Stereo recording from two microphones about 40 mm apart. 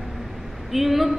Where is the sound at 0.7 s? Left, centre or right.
Centre.